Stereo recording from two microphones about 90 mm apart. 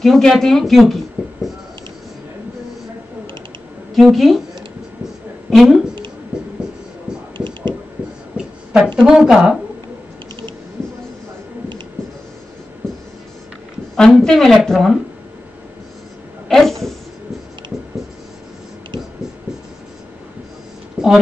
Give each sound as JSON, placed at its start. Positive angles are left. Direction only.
{"t": 0.0, "sound": "speech", "side_deg": 0}
{"t": 3.9, "sound": "speech", "side_deg": 0}
{"t": 5.5, "sound": "speech", "side_deg": 0}
{"t": 7.3, "sound": "a sound", "side_deg": -60}
{"t": 8.4, "sound": "a sound", "side_deg": -10}
{"t": 9.0, "sound": "a woman's voice", "side_deg": -5}
{"t": 13.9, "sound": "speech", "side_deg": 5}
{"t": 16.4, "sound": "speech", "side_deg": 0}
{"t": 21.0, "sound": "a sound", "side_deg": -10}